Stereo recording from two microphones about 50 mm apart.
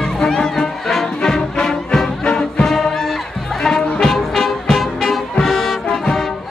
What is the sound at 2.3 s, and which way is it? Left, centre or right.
Music, left.